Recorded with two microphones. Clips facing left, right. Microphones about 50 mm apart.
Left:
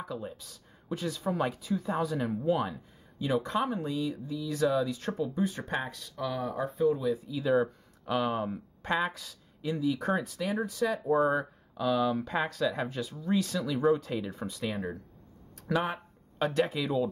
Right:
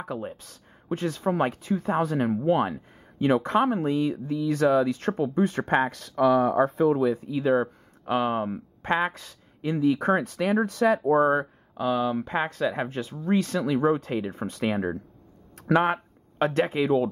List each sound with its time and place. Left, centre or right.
0.0 s speech: right
11.1 s speech: right
15.8 s speech: right